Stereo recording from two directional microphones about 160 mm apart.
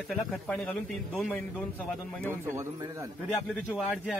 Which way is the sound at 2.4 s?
15° right (ahead or behind).